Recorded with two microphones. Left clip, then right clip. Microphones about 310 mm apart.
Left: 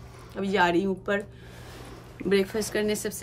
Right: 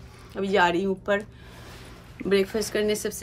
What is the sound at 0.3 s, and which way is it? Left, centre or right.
Speech, centre.